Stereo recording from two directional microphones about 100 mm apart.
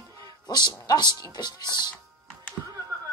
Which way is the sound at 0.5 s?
45° left (ahead or behind).